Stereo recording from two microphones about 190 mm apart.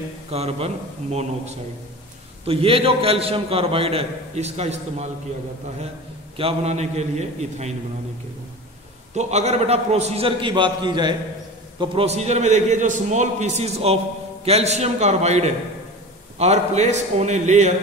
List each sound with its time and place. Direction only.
0.3 s a man's voice: 35° right (ahead or behind)
6.3 s a man's voice: 30° right (ahead or behind)
9.1 s a man's voice: 35° right (ahead or behind)